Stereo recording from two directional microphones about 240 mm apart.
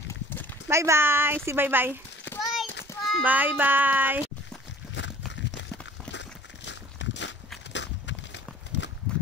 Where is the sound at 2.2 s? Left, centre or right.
Centre.